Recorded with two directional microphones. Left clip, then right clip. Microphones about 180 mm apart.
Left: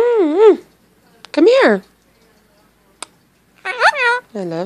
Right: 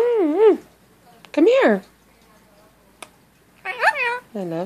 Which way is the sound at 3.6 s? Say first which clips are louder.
Left 6 dB; 25° left (ahead or behind).